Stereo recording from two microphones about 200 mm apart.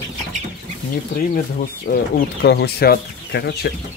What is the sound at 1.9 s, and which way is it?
Speech, 45° left (ahead or behind).